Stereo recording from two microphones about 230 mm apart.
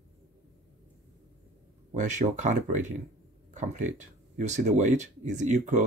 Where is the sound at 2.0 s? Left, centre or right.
Right.